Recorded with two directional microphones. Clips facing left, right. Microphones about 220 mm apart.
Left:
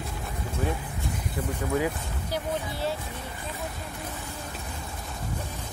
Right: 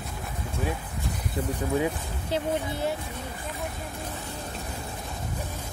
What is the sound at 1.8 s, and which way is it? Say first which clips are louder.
Speech: right 1 dB; 25° right (ahead or behind).